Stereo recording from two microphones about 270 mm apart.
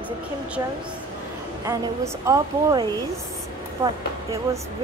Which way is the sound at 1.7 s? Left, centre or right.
Centre.